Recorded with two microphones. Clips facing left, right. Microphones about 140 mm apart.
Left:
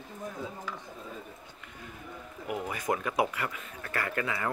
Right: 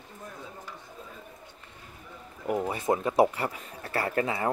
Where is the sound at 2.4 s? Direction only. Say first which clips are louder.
Right 5 dB; 35° right (ahead or behind).